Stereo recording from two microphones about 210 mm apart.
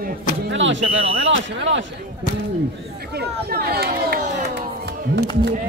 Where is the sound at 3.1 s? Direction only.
50° right (ahead or behind).